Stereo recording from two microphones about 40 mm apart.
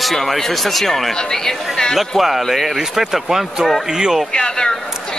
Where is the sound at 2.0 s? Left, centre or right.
Centre.